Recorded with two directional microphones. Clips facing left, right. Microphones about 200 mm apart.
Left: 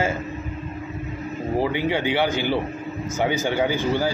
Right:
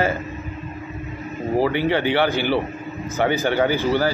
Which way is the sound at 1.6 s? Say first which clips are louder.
Right 3 dB; 15° left (ahead or behind).